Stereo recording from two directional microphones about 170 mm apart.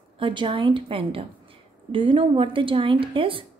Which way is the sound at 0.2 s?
30° right (ahead or behind).